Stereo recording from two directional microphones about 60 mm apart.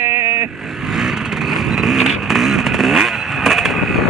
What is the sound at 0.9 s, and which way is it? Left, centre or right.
Vehicle, centre.